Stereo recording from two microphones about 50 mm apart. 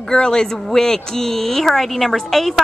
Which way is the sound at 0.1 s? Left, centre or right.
Centre.